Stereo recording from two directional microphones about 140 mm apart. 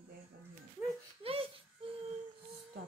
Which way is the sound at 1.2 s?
40° right (ahead or behind).